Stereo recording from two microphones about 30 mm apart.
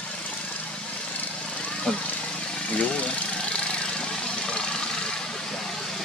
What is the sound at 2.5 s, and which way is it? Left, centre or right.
Vehicle, left.